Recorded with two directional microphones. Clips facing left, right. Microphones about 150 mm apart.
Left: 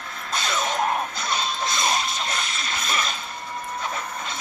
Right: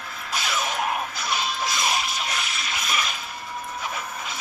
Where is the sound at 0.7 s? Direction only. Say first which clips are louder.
Left 4 dB; 35° left (ahead or behind).